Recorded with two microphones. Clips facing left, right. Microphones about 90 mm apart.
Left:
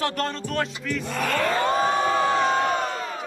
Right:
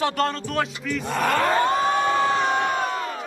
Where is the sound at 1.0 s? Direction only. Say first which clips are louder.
Right 4 dB; 45° right (ahead or behind).